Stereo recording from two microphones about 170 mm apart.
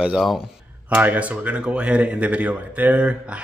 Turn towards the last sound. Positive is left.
turn(degrees=-5)  # may be behind; listen again after turning